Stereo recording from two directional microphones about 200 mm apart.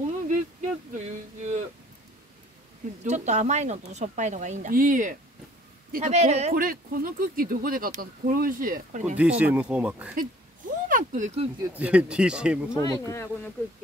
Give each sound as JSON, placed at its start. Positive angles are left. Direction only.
{"t": 0.3, "sound": "a sound", "side_deg": -35}
{"t": 3.1, "sound": "speech", "side_deg": -35}
{"t": 6.5, "sound": "speech", "side_deg": -45}
{"t": 9.1, "sound": "speech", "side_deg": -5}
{"t": 10.9, "sound": "speech", "side_deg": -40}
{"t": 11.6, "sound": "speech", "side_deg": -5}
{"t": 12.7, "sound": "speech", "side_deg": 20}